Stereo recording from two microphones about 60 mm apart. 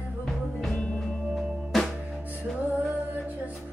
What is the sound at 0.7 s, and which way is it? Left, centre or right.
Music, centre.